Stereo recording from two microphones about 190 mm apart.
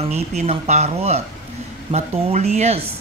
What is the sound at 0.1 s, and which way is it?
Speech, 35° right (ahead or behind).